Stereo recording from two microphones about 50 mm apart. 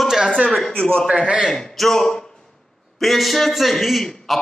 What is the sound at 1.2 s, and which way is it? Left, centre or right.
Speech, right.